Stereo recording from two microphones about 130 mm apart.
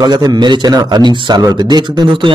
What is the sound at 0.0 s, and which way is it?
A man's voice, 30° right (ahead or behind).